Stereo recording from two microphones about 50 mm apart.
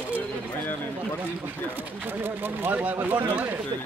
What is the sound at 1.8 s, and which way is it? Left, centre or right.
Speech, right.